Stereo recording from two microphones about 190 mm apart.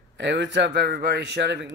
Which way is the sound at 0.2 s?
65° right (ahead or behind).